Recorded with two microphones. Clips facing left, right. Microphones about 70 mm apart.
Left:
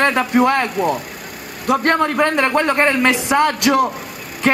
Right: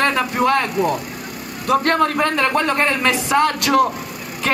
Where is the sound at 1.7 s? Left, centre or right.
Centre.